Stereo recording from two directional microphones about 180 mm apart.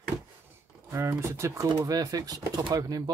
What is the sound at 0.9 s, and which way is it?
Speech, 15° right (ahead or behind).